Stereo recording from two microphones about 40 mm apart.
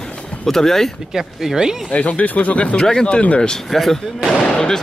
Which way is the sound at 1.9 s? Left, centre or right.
Left.